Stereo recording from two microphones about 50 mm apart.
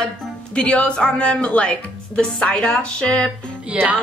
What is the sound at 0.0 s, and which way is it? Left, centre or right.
Speech, left.